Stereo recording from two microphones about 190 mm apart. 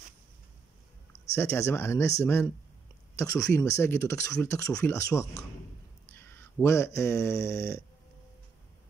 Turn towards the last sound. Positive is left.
turn(degrees=15)  # may be behind; listen again after turning